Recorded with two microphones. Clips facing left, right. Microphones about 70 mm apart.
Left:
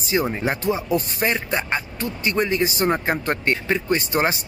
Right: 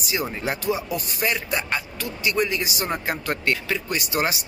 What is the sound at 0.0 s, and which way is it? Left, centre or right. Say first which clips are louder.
Speech: left 5 dB; left.